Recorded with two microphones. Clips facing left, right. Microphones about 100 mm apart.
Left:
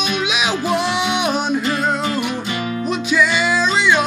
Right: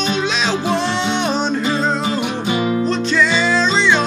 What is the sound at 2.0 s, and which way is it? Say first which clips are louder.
Music: right 1 dB; 25° right (ahead or behind).